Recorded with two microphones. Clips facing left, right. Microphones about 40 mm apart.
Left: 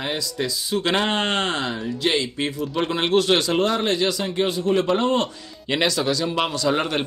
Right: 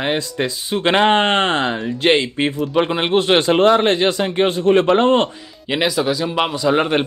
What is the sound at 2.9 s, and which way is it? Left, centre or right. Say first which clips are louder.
Speech: left 1 dB; right.